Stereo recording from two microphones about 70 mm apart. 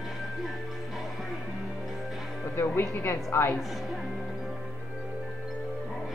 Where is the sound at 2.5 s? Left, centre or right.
Left.